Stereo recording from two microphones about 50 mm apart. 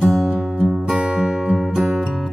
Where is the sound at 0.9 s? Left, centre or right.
Centre.